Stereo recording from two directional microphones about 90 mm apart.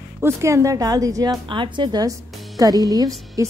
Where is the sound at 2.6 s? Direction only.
45° right (ahead or behind).